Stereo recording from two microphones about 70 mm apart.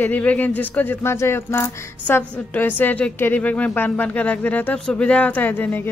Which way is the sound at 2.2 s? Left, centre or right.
Left.